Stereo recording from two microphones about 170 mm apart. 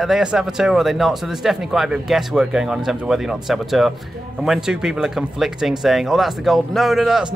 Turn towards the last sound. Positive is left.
turn(degrees=0)  # may be behind; listen again after turning